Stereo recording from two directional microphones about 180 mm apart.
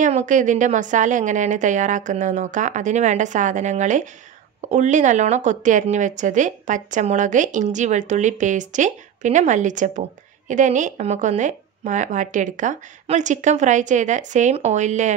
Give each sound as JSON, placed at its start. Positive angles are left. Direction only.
{"t": 0.0, "sound": "speech", "side_deg": -45}